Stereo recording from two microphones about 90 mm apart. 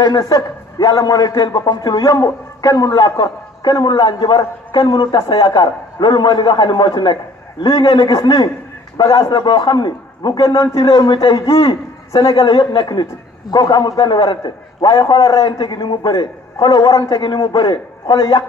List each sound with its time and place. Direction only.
0.0 s a man's voice: 45° left (ahead or behind)
10.9 s a man's voice: 60° left (ahead or behind)
11.5 s a man's voice: 90° left
12.2 s a man's voice: 55° left (ahead or behind)